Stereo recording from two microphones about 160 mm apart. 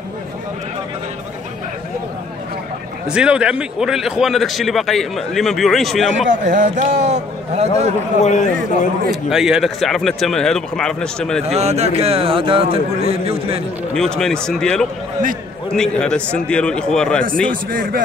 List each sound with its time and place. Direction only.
3.1 s a man's voice: 5° right (ahead or behind)
6.2 s speech: 50° right (ahead or behind)
8.2 s a man's voice: 45° left (ahead or behind)
9.1 s a man's voice: 5° right (ahead or behind)
11.4 s speech: 40° right (ahead or behind)
13.9 s a man's voice: 5° left (ahead or behind)
17.6 s a man's voice: 60° right (ahead or behind)